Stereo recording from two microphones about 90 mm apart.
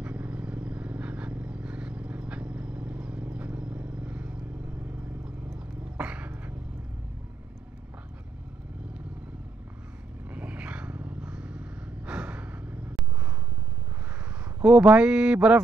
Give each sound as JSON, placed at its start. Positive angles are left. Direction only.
{"t": 0.0, "sound": "vehicle", "side_deg": -15}
{"t": 10.3, "sound": "gasp", "side_deg": -15}
{"t": 14.6, "sound": "a sound", "side_deg": -10}